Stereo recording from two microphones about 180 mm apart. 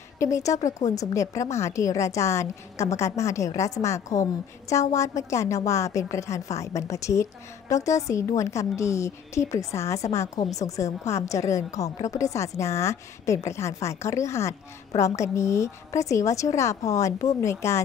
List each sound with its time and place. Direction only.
0.2 s a woman's voice: 15° left (ahead or behind)